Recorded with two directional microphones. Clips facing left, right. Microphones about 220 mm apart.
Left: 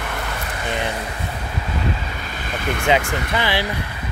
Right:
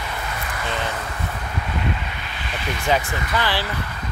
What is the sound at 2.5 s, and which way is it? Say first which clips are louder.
Vehicle: left 4 dB; 50° left (ahead or behind).